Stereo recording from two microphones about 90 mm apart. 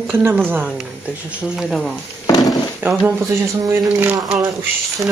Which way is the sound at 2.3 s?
45° left (ahead or behind).